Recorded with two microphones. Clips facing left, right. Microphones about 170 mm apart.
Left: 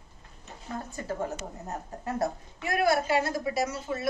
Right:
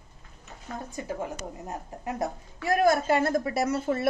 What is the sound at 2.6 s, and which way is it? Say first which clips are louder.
Speech: right 3 dB; 45° right (ahead or behind).